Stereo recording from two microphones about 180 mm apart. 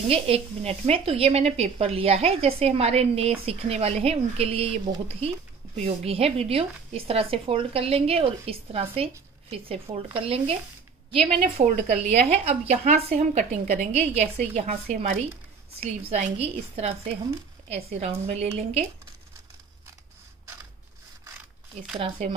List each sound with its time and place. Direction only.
0.1 s speech: 35° right (ahead or behind)
11.4 s a woman's voice: 50° right (ahead or behind)
12.3 s speech: 35° right (ahead or behind)
21.9 s speech: 30° right (ahead or behind)